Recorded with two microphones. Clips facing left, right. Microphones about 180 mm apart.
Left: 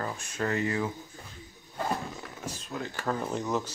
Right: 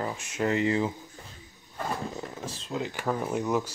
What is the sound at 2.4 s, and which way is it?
Speech, 25° right (ahead or behind).